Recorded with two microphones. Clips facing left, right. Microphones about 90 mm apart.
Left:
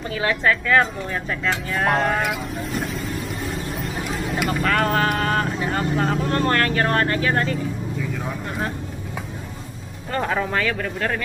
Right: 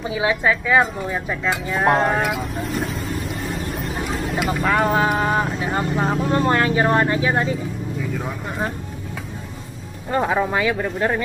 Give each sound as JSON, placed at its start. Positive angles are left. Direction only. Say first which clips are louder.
{"t": 0.1, "sound": "speech", "louder": "right 1 dB", "side_deg": -10}
{"t": 2.2, "sound": "speech", "louder": "right 2 dB", "side_deg": 0}
{"t": 10.1, "sound": "speech", "louder": "right 3 dB", "side_deg": -15}